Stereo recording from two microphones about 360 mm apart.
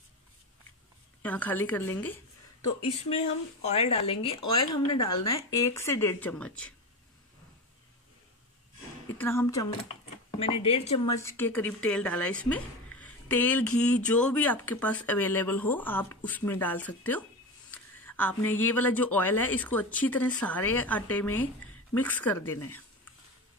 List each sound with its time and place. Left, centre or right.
1.2 s speech: centre
2.8 s speech: centre
9.2 s speech: centre